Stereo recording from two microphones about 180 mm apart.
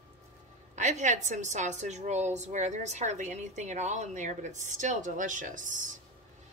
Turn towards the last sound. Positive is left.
turn(degrees=-45)  # may be behind; listen again after turning